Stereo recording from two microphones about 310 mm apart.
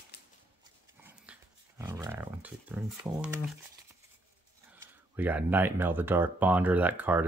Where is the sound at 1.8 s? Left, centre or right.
Centre.